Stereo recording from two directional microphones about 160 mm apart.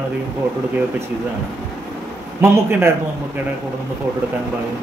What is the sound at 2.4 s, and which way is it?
Speech, 10° right (ahead or behind).